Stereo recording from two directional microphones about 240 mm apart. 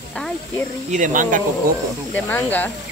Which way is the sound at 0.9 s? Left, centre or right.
Right.